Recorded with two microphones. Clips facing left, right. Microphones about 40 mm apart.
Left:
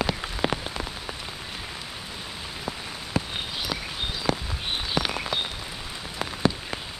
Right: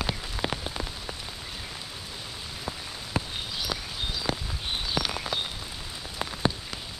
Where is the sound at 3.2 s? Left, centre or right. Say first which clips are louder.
Left 2 dB; centre.